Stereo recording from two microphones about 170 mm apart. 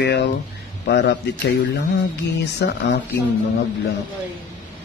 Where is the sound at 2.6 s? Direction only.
80° left.